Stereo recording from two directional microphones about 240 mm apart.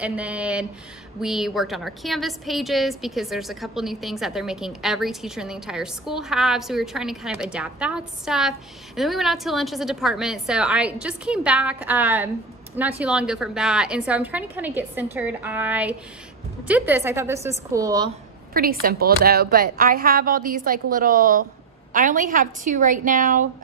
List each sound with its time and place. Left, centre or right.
0.0 s a woman's voice: centre
18.5 s a woman's voice: right